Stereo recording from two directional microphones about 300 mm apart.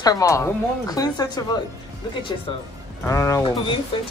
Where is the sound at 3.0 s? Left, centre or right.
Centre.